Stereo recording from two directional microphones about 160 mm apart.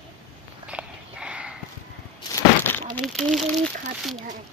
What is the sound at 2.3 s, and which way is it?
Crack, 15° left (ahead or behind).